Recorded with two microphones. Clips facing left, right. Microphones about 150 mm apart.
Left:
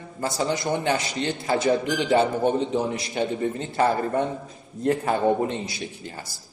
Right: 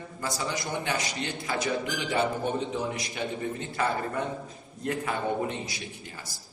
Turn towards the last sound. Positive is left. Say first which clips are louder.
# left 6 dB
turn(degrees=30)  # may be behind; listen again after turning